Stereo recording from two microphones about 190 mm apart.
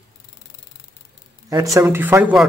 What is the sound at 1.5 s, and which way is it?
Speech, 15° right (ahead or behind).